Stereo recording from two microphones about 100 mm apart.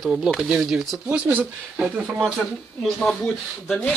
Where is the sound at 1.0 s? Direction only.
20° right (ahead or behind).